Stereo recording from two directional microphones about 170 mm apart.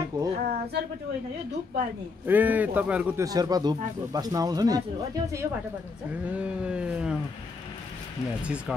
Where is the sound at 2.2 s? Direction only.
10° right (ahead or behind).